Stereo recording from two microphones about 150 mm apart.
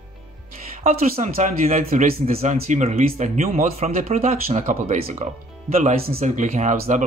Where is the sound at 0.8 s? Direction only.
45° right (ahead or behind).